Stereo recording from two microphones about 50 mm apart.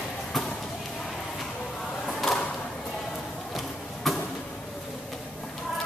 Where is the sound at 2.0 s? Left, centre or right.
Centre.